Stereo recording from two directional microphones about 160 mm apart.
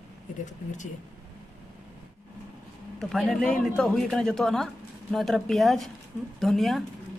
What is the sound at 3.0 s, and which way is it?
Speech, centre (ahead or behind).